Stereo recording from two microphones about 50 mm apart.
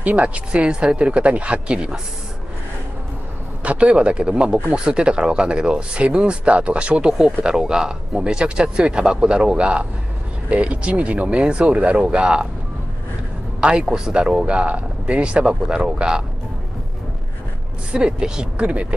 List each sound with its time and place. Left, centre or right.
0.0 s speech: right
0.5 s speech: centre
3.6 s speech: right
13.6 s speech: centre
17.9 s speech: centre